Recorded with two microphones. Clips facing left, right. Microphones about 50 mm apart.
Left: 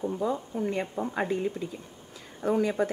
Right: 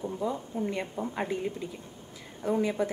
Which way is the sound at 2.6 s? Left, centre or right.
Left.